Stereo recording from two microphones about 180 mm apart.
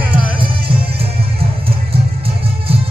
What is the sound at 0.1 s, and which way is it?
Music, 30° right (ahead or behind).